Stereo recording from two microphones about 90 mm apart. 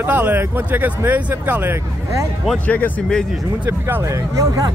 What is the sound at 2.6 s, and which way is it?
Speech, 15° left (ahead or behind).